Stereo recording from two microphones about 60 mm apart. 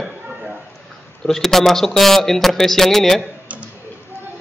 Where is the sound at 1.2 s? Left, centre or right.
Centre.